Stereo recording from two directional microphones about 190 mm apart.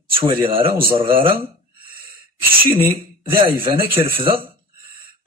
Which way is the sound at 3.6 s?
30° right (ahead or behind).